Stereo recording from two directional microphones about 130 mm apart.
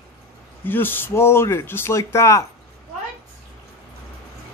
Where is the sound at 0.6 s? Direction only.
15° left (ahead or behind).